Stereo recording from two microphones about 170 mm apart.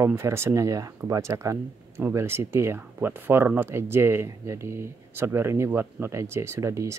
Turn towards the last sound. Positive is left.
turn(degrees=-15)  # may be behind; listen again after turning